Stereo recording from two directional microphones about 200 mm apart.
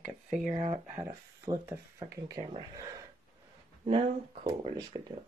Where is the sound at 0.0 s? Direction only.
5° right (ahead or behind).